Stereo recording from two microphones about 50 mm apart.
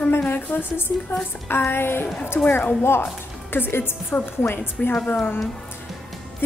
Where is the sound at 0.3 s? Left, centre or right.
Left.